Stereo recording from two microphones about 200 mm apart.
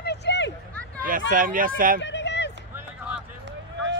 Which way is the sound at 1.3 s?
45° right (ahead or behind).